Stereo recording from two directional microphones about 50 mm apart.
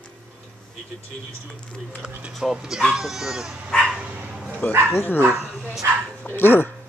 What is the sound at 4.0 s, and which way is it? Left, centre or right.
Speech, right.